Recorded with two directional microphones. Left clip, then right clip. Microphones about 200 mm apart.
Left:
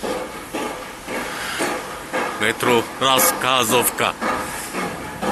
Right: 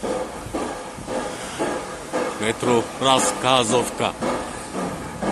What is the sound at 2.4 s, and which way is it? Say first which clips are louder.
A man's voice: left 4 dB; 5° right (ahead or behind).